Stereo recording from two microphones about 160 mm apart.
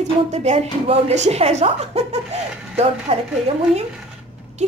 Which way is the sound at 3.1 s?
40° right (ahead or behind).